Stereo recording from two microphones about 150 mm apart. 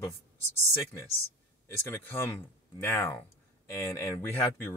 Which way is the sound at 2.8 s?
15° left (ahead or behind).